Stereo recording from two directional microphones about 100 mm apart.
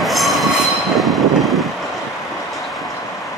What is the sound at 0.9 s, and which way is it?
Vehicle, centre (ahead or behind).